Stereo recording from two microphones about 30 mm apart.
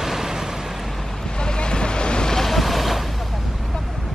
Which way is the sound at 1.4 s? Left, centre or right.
Left.